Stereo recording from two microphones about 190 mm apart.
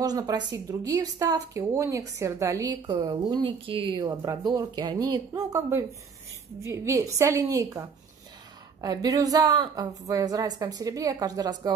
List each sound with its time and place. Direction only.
0.0 s a woman's voice: 20° right (ahead or behind)